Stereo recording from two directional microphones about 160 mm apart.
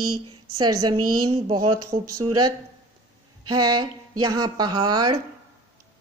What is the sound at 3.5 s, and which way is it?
A woman's voice, 25° right (ahead or behind).